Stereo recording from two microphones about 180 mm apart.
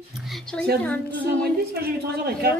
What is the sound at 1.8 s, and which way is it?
Speech, 60° right (ahead or behind).